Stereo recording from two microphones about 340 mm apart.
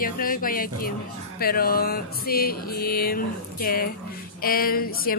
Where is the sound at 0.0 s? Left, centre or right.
Left.